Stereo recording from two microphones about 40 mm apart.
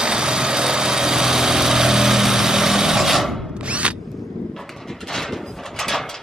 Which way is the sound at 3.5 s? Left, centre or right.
Right.